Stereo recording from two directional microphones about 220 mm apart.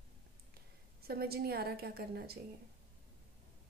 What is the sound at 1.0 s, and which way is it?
A woman's voice, 45° right (ahead or behind).